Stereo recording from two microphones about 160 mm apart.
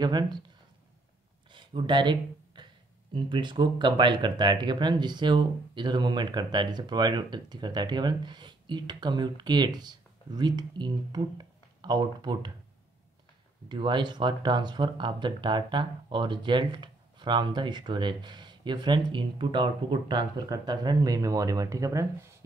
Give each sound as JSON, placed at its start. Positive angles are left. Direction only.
{"t": 0.0, "sound": "speech", "side_deg": -25}
{"t": 1.5, "sound": "a sound", "side_deg": -30}
{"t": 3.2, "sound": "speech", "side_deg": -30}
{"t": 13.7, "sound": "speech", "side_deg": -30}